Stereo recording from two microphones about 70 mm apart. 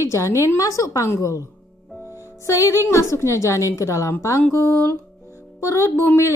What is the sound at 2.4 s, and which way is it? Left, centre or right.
A woman's voice, left.